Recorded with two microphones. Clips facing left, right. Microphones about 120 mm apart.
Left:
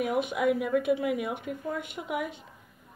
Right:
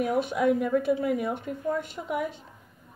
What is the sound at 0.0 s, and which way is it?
Speech, 5° left (ahead or behind).